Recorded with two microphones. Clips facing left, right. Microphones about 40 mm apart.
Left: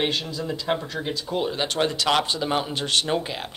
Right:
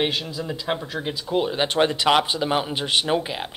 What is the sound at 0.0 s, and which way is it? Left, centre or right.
Speech, centre.